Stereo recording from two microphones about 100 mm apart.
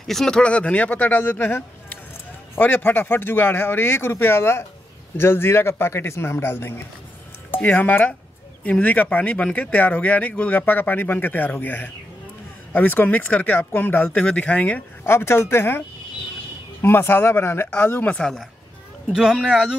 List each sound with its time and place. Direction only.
0.0 s speech: 5° left (ahead or behind); by 15.8 s 25° left (ahead or behind)
16.8 s speech: 25° left (ahead or behind)
19.1 s speech: 5° right (ahead or behind)